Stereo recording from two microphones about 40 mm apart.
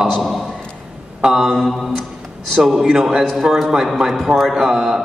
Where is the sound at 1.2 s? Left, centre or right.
Centre.